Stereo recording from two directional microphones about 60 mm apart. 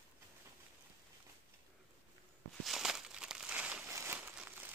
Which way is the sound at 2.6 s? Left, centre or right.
Centre.